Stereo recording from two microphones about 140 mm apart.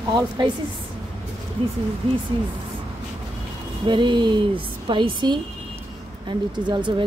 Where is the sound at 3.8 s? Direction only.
35° right (ahead or behind).